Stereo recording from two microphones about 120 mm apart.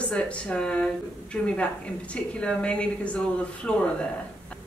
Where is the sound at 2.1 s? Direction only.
10° left (ahead or behind).